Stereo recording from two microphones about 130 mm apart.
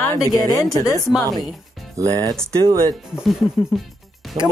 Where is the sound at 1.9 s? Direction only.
25° right (ahead or behind).